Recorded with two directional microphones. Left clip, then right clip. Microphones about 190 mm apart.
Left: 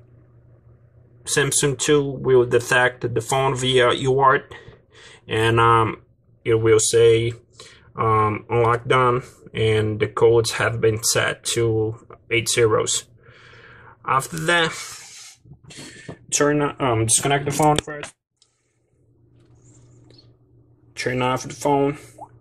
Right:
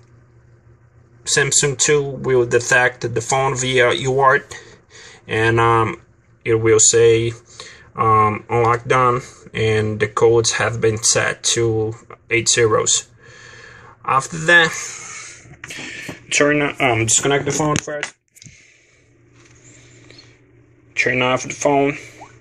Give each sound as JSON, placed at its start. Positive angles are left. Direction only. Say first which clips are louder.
{"t": 1.2, "sound": "speech", "louder": "right 4 dB", "side_deg": 10}
{"t": 16.4, "sound": "speech", "louder": "right 2 dB", "side_deg": 15}
{"t": 21.0, "sound": "speech", "louder": "right 6 dB", "side_deg": 15}